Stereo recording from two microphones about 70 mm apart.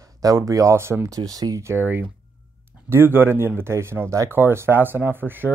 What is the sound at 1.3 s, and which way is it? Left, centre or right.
Speech, right.